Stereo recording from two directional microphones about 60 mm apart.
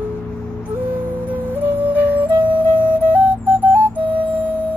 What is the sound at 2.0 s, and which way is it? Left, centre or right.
Flute, right.